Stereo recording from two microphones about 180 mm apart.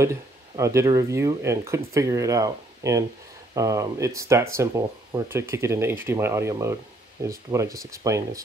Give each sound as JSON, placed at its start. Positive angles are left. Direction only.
{"t": 0.0, "sound": "speech", "side_deg": -15}